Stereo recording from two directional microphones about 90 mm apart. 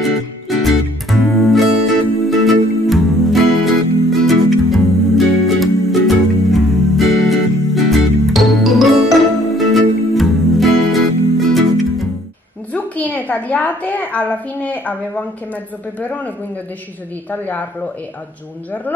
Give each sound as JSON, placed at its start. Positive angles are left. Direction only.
{"t": 0.5, "sound": "music", "side_deg": 0}
{"t": 12.7, "sound": "a sound", "side_deg": 20}
{"t": 14.3, "sound": "a woman's voice", "side_deg": 15}